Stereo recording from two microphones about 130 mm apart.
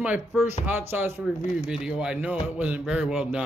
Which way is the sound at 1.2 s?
5° right (ahead or behind).